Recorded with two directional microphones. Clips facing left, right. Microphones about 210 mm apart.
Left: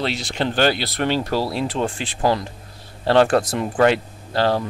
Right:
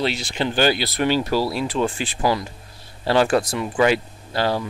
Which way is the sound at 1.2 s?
25° left (ahead or behind).